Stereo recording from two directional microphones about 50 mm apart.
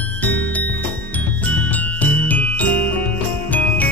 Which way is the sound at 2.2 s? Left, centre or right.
Left.